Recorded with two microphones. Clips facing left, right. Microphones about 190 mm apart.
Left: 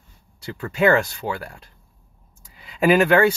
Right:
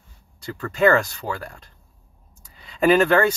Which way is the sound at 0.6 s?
10° left (ahead or behind).